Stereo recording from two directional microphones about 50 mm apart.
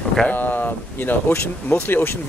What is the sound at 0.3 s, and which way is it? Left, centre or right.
Speech, left.